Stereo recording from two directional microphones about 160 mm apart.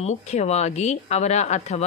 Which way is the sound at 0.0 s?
45° left (ahead or behind).